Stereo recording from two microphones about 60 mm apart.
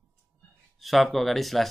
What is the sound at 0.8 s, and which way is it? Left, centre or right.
Speech, centre.